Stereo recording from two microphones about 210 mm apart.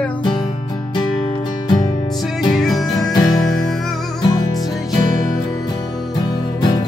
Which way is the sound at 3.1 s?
20° left (ahead or behind).